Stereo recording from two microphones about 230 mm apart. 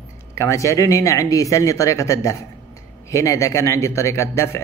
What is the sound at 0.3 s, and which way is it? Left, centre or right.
Speech, centre.